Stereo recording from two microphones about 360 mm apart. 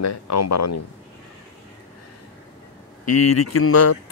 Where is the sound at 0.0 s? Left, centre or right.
Left.